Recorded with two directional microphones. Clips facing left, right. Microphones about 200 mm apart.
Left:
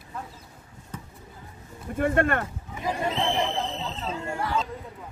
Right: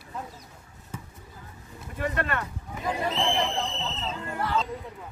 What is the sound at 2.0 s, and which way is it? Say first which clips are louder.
Speech: left 6 dB; 50° left (ahead or behind).